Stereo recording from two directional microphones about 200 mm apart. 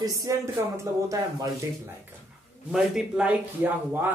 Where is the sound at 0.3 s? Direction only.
15° right (ahead or behind).